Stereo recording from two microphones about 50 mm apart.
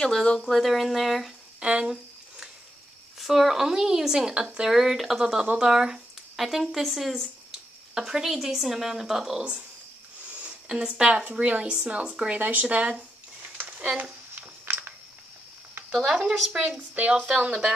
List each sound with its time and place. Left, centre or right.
0.0 s speech: centre
1.6 s speech: right
3.2 s speech: centre
4.7 s speech: centre
5.2 s speech: centre
7.9 s speech: centre
10.7 s speech: centre
11.2 s speech: right
12.4 s speech: right
13.6 s a sound: right
14.7 s a sound: right
15.9 s speech: centre
16.5 s speech: right